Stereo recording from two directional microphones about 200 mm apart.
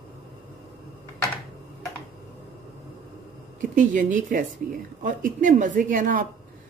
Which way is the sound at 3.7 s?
40° right (ahead or behind).